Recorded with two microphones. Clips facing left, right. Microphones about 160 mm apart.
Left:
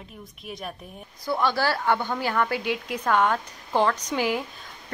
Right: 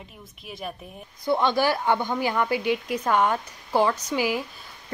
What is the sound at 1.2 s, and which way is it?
A woman's voice, 20° right (ahead or behind).